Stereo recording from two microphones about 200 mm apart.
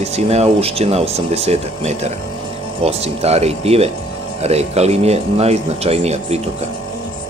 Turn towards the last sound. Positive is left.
turn(degrees=-30)  # may be behind; listen again after turning